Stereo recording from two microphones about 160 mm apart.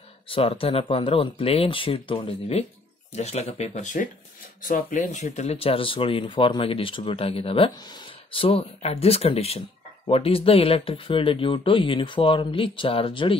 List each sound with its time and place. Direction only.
0.3 s speech: 35° left (ahead or behind)